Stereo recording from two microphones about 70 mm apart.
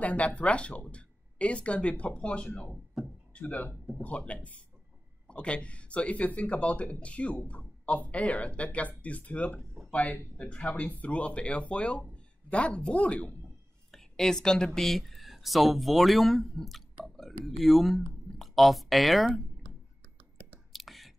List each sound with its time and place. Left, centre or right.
0.0 s speech: centre
13.9 s speech: centre
20.7 s whispering: centre